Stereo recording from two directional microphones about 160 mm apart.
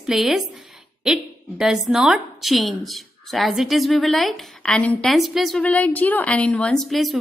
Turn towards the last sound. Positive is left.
turn(degrees=0)  # may be behind; listen again after turning